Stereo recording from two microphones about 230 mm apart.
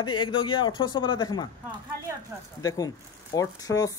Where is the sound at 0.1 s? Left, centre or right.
Left.